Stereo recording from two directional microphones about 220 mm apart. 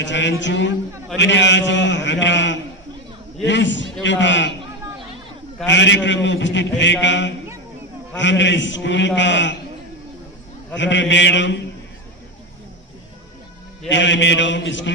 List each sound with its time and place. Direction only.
0.0 s a man's voice: 55° left (ahead or behind)
5.7 s a man's voice: 55° left (ahead or behind)
10.8 s a man's voice: 55° left (ahead or behind)
13.8 s a man's voice: 55° left (ahead or behind)